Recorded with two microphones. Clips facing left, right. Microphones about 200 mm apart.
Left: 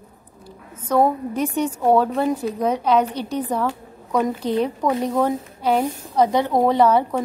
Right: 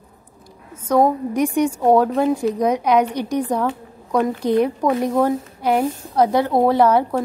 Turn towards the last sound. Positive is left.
turn(degrees=-10)  # may be behind; listen again after turning